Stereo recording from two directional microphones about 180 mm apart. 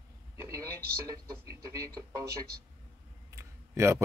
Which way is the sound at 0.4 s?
20° right (ahead or behind).